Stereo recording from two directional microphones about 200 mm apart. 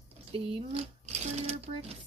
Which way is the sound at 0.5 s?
30° right (ahead or behind).